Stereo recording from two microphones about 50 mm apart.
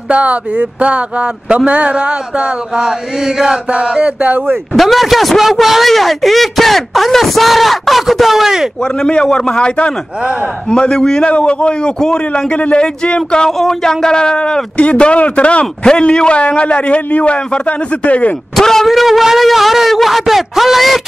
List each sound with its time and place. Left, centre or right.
0.1 s chant: right
4.7 s a man's voice: centre
8.8 s a man's voice: centre
13.5 s a man's voice: centre; by 18.3 s left
18.6 s a man's voice: centre
18.9 s a man's voice: centre